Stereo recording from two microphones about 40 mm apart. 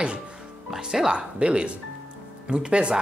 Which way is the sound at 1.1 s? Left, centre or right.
Right.